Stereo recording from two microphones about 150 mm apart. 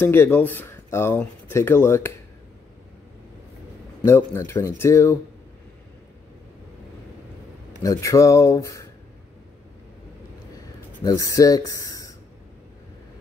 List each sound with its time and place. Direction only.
0.0 s speech: 15° left (ahead or behind)
4.0 s speech: 15° left (ahead or behind)
7.8 s speech: 20° left (ahead or behind)
11.0 s speech: 25° left (ahead or behind)